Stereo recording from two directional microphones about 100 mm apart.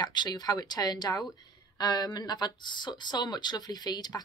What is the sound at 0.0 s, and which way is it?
Speech, 45° left (ahead or behind).